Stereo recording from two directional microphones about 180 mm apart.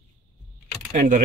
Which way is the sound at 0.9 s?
50° right (ahead or behind).